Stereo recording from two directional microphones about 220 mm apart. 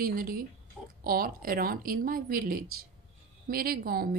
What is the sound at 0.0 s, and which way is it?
Speech, 40° right (ahead or behind).